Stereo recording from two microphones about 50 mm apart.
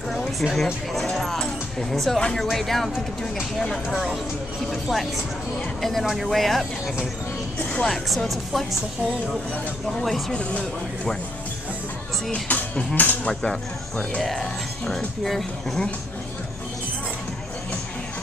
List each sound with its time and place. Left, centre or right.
0.4 s speech: centre
0.9 s music: centre
1.9 s speech: centre
3.9 s speech: centre
7.8 s speech: centre
10.3 s speech: centre
12.3 s cutlery: left
13.5 s speech: centre
15.2 s speech: centre